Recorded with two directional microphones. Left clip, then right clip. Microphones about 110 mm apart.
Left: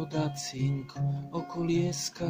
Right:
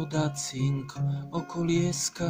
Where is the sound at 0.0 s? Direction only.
40° right (ahead or behind).